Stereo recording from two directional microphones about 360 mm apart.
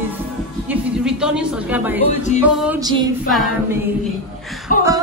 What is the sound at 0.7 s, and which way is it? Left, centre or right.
A woman's voice, centre.